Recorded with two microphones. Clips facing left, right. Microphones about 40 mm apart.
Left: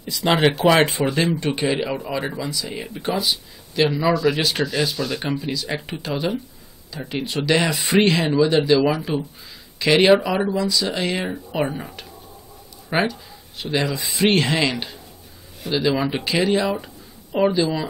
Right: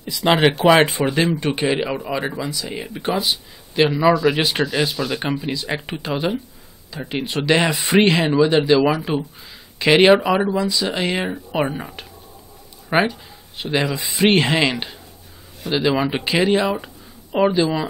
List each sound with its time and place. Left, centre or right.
0.0 s speech: centre
1.1 s speech: centre
7.7 s speech: centre